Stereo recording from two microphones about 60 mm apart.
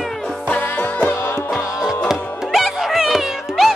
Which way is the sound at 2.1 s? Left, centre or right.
Centre.